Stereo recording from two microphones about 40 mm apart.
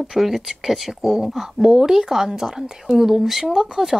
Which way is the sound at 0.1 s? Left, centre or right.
Centre.